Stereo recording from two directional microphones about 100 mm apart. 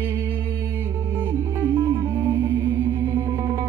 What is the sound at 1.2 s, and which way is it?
Music, 25° right (ahead or behind).